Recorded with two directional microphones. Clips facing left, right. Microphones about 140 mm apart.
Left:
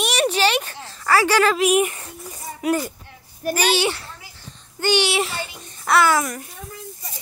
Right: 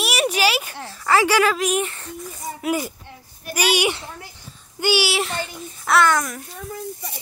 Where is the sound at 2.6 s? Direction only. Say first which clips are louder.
Left 2 dB; 10° right (ahead or behind).